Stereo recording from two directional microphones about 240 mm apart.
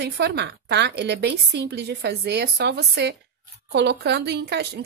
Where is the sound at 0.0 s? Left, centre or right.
Right.